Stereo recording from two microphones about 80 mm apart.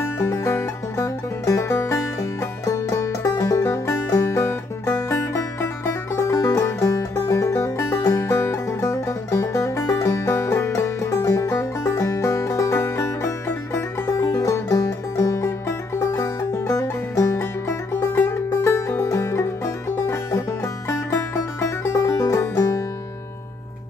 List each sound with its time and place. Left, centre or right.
0.0 s music: left
7.2 s music: left
8.2 s music: left
14.0 s music: left
17.4 s music: left